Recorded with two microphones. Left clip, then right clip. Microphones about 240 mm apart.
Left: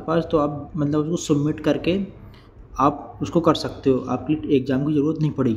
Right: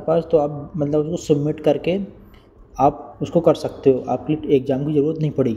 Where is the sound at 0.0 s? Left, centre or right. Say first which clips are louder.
Right 3 dB; centre.